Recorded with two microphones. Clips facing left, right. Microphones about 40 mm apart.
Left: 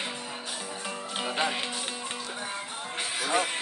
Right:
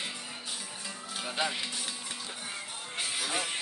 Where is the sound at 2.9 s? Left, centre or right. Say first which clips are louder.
Left 5 dB; left.